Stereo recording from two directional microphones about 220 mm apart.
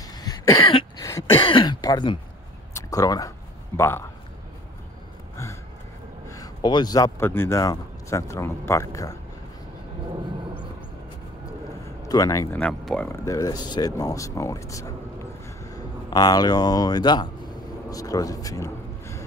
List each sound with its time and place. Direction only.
0.0 s cough: 15° left (ahead or behind)
2.7 s a sound: 15° left (ahead or behind)
6.2 s a man's voice: 15° left (ahead or behind)
12.0 s speech: 15° left (ahead or behind)
15.4 s a sound: 15° left (ahead or behind)
17.8 s a man's voice: 15° left (ahead or behind)